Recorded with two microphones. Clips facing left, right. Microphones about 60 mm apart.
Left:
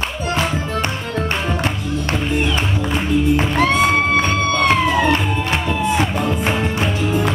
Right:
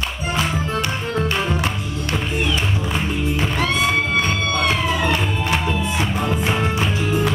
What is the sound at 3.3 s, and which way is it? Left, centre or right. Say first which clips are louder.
Music: left 4 dB; left.